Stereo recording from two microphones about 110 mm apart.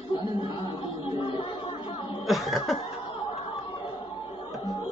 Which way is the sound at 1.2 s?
55° left (ahead or behind).